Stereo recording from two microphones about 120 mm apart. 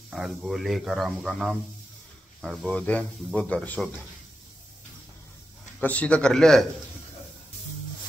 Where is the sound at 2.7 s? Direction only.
10° left (ahead or behind).